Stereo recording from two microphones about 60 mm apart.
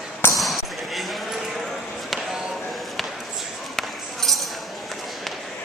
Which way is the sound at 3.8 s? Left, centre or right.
Centre.